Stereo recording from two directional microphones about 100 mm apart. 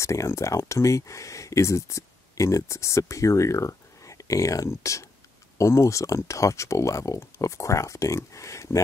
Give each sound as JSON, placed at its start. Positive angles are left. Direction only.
{"t": 0.0, "sound": "speech", "side_deg": 30}